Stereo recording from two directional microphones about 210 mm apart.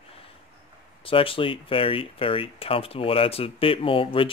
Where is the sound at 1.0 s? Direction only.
25° left (ahead or behind).